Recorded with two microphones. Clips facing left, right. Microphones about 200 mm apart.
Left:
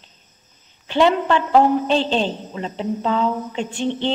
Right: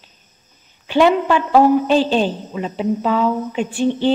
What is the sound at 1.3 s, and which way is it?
A woman's voice, 10° right (ahead or behind).